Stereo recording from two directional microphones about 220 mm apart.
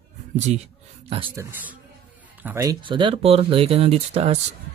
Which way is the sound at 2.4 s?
10° right (ahead or behind).